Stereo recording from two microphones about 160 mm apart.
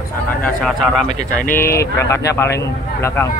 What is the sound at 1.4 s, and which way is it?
Speech, 15° left (ahead or behind).